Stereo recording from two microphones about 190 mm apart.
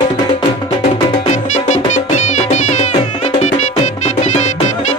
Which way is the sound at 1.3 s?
40° left (ahead or behind).